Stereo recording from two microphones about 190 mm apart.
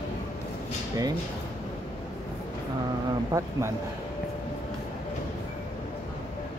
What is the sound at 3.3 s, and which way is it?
Speech, 15° right (ahead or behind).